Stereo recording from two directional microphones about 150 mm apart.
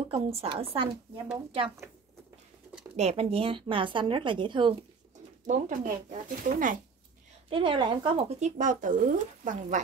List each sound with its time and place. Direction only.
0.1 s a woman's voice: 40° right (ahead or behind)
3.0 s a woman's voice: 45° right (ahead or behind)
5.5 s speech: 60° right (ahead or behind)
7.4 s speech: 35° right (ahead or behind); by 9.8 s 55° right (ahead or behind)